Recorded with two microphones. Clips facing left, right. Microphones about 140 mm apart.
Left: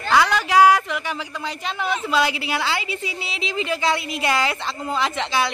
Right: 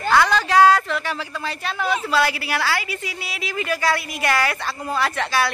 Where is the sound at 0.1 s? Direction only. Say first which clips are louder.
Even; 15° left (ahead or behind).